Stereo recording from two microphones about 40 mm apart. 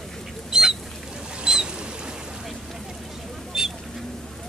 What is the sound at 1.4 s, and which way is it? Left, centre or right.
Rodents, right.